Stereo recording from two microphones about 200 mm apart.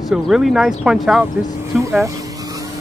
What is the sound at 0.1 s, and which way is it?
Speech, centre (ahead or behind).